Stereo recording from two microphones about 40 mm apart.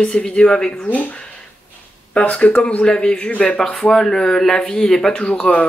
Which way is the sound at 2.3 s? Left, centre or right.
Left.